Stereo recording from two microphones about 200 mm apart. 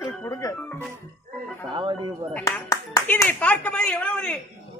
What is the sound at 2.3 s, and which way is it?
Speech, 15° left (ahead or behind).